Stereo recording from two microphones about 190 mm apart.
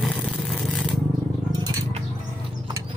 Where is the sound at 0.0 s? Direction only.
Centre (ahead or behind).